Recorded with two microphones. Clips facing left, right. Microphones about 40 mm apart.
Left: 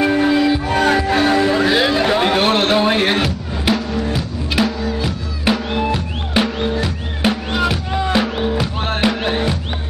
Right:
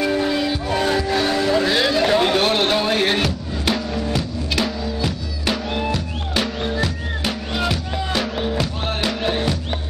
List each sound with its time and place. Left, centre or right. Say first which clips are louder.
0.0 s music: left 5 dB; left
6.6 s music: left 3 dB; centre
7.9 s music: left 6 dB; left
8.4 s music: left 3 dB; centre
8.8 s music: left 5 dB; left